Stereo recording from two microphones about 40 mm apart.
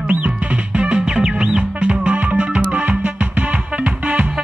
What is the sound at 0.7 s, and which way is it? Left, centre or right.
Music, right.